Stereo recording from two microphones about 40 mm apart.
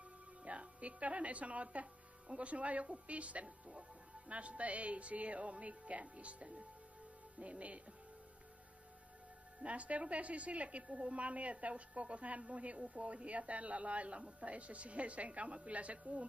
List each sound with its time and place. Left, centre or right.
0.4 s a woman's voice: right
9.6 s a woman's voice: right